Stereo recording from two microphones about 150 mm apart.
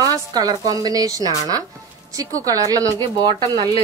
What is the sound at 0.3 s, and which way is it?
A woman's voice, 25° right (ahead or behind).